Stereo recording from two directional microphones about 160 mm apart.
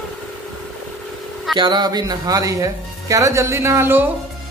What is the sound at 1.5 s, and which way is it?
Speech, 30° right (ahead or behind).